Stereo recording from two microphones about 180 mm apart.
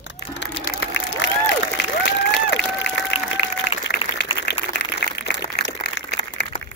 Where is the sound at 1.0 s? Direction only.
85° left.